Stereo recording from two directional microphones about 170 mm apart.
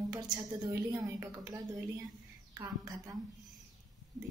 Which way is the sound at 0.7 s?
20° right (ahead or behind).